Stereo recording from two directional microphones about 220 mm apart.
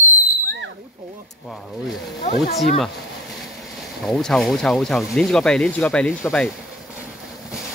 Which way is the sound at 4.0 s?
Centre (ahead or behind).